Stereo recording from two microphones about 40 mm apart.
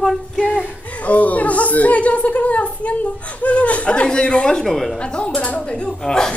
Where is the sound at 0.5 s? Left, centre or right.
Right.